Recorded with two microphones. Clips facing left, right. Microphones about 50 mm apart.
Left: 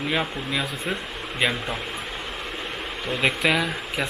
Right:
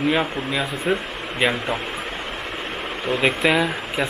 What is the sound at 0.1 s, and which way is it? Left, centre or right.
Speech, centre.